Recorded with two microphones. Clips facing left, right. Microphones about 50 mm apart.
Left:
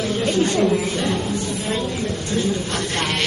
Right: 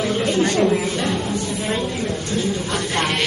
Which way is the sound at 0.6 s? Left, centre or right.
Centre.